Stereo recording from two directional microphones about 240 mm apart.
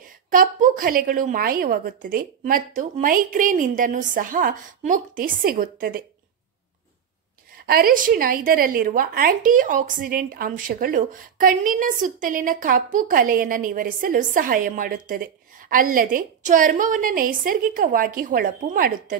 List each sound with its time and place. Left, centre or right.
0.3 s a woman's voice: right
7.6 s a woman's voice: right